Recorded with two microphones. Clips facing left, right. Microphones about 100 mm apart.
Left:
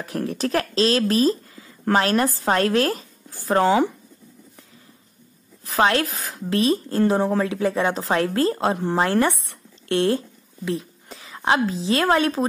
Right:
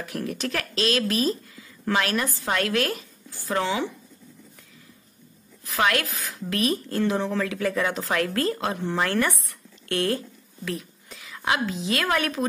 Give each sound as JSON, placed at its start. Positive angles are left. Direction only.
{"t": 0.0, "sound": "speech", "side_deg": 30}
{"t": 5.7, "sound": "speech", "side_deg": 30}